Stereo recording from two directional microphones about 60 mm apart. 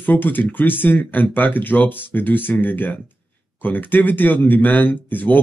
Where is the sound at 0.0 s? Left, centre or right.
Left.